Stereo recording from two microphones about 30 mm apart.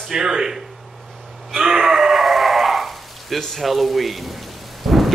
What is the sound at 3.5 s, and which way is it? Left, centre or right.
Rain, centre.